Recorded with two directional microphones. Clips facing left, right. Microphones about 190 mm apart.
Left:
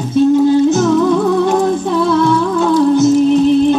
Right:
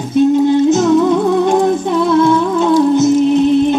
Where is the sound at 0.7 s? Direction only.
20° right (ahead or behind).